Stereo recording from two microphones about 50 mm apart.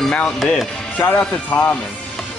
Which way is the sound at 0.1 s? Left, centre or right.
Centre.